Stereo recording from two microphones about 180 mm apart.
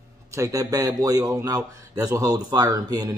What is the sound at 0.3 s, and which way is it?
A man's voice, 15° right (ahead or behind).